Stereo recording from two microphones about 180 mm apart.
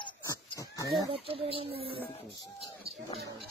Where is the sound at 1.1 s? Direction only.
30° right (ahead or behind).